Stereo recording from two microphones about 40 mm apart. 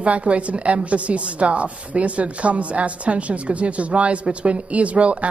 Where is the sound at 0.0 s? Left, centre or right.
Right.